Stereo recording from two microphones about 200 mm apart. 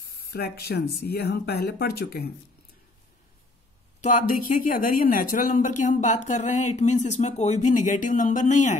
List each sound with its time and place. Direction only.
0.3 s speech: 55° left (ahead or behind)
4.0 s speech: 40° left (ahead or behind)